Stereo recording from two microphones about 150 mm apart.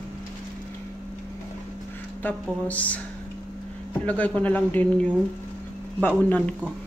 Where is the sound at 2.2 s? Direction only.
10° left (ahead or behind).